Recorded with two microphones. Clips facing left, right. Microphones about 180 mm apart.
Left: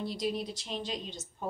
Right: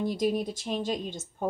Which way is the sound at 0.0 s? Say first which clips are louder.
Right 6 dB; 50° right (ahead or behind).